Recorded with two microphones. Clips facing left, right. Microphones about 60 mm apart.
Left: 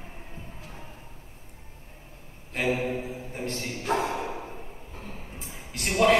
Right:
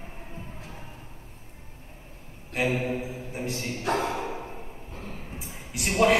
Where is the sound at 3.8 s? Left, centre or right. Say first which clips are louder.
Even; right.